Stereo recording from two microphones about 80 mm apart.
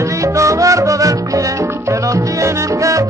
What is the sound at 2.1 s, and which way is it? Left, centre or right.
Salsa music, right.